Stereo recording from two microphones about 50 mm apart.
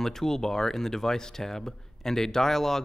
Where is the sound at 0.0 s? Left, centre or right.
Centre.